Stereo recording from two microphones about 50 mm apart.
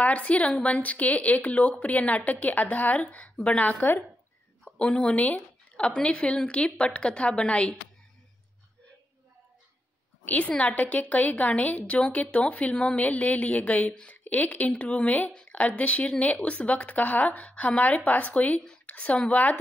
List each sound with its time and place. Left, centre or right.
0.0 s a woman's voice: left
3.6 s speech: left
4.7 s a woman's voice: left
10.2 s a woman's voice: left